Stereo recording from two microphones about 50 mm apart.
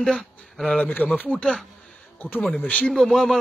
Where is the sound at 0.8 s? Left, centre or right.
Left.